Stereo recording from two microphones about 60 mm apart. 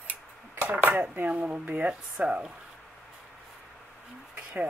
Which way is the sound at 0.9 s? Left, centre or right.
Right.